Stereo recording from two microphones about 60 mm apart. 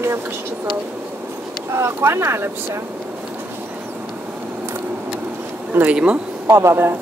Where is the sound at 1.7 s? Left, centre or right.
Right.